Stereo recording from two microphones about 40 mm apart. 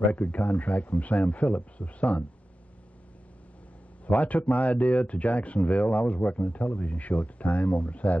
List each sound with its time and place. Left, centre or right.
0.1 s speech: left
4.0 s speech: left